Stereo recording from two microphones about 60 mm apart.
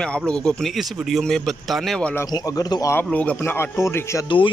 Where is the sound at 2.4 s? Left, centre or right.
Left.